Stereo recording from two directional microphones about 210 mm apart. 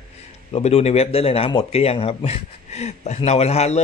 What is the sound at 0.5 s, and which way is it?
Speech, 30° left (ahead or behind).